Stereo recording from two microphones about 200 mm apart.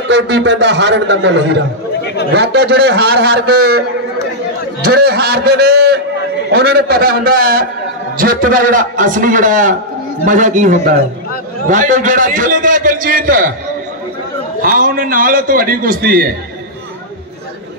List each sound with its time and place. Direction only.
0.1 s a man's voice: 60° right (ahead or behind)
4.9 s a man's voice: 50° right (ahead or behind)
14.8 s a man's voice: 45° right (ahead or behind)